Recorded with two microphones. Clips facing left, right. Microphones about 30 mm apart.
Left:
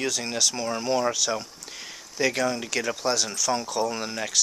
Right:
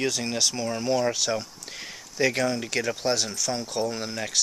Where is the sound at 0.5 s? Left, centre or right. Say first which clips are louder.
Even; centre.